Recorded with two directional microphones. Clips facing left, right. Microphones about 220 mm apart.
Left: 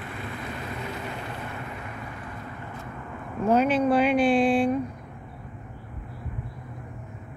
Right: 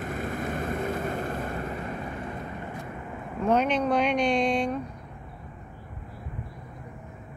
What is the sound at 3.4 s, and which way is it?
Speech, 5° left (ahead or behind).